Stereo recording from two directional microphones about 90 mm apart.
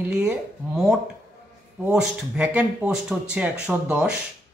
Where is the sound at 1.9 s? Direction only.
10° right (ahead or behind).